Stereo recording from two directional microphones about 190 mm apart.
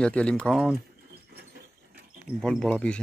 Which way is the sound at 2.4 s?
5° left (ahead or behind).